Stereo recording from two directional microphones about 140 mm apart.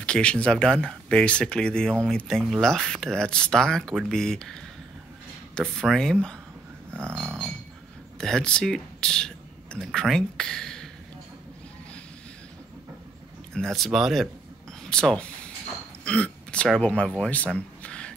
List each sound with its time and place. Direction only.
0.0 s speech: 5° left (ahead or behind)
6.9 s dog: 15° right (ahead or behind)
8.2 s speech: 5° left (ahead or behind)
13.5 s speech: 5° left (ahead or behind)
17.6 s a sound: 10° left (ahead or behind)